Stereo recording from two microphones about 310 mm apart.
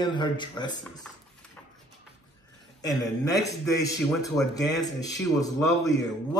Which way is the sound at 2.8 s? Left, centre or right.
Centre.